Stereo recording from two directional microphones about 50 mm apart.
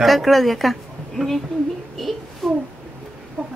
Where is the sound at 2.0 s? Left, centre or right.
Centre.